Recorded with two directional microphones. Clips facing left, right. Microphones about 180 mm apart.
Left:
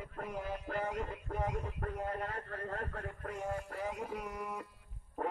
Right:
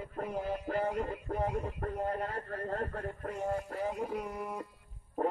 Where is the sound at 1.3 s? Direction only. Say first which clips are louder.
Right 3 dB; 35° right (ahead or behind).